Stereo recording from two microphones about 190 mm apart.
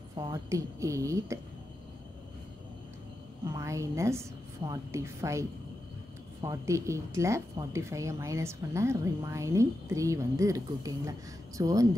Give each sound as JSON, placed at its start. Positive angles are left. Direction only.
{"t": 0.1, "sound": "a woman's voice", "side_deg": -20}
{"t": 3.4, "sound": "a woman's voice", "side_deg": -15}